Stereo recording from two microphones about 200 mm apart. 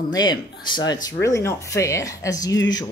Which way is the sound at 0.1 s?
20° left (ahead or behind).